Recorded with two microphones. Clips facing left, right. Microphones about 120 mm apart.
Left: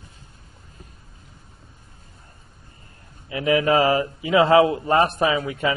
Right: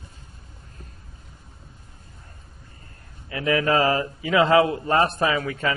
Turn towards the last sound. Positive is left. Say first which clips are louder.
# left 2 dB
turn(degrees=20)  # may be behind; listen again after turning